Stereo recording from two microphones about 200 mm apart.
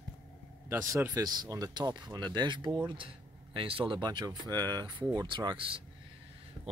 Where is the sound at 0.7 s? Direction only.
15° right (ahead or behind).